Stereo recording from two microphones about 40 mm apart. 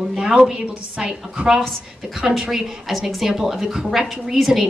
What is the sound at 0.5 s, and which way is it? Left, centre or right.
Speech, right.